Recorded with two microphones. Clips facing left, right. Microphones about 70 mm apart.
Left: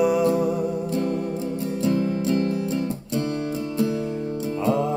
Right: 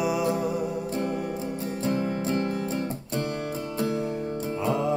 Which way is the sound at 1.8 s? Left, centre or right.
Right.